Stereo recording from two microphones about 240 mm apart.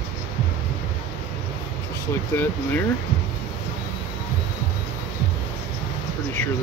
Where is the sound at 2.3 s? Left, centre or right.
Centre.